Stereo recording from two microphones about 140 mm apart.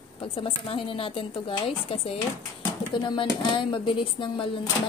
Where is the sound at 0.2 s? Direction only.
40° left (ahead or behind).